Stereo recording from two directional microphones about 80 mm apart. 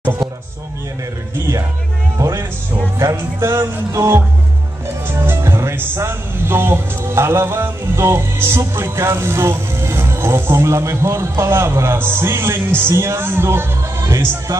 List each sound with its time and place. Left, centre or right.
2.1 s music: right
3.2 s music: right
5.0 s speech: right